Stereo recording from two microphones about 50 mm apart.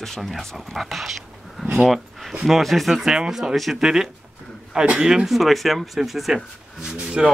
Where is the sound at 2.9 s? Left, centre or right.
Centre.